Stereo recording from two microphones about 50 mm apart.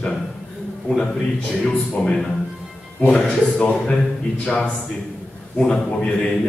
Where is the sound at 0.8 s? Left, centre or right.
Centre.